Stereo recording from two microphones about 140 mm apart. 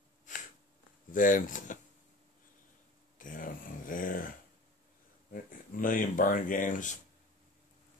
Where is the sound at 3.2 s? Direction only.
75° left (ahead or behind).